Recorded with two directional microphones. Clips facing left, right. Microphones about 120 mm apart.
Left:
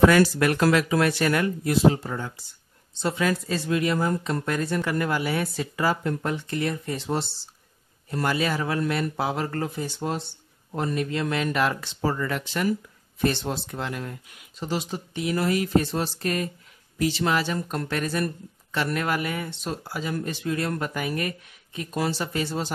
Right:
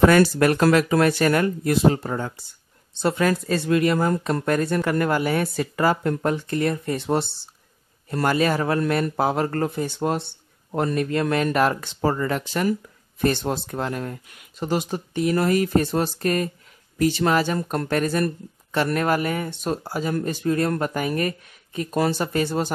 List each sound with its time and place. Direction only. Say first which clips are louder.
0.0 s speech: right 2 dB; 45° right (ahead or behind)
2.9 s speech: right 4 dB; 60° right (ahead or behind); by 12.7 s 40° right (ahead or behind)
13.2 s speech: right 3 dB; 50° right (ahead or behind)